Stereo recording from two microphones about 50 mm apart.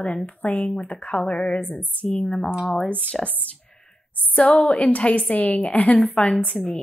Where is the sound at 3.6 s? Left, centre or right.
Centre.